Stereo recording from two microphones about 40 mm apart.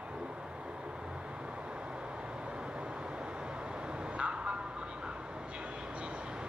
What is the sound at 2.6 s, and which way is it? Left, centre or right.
Vehicle, right.